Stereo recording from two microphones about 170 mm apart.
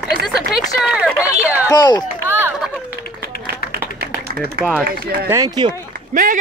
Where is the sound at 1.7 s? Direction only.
25° left (ahead or behind).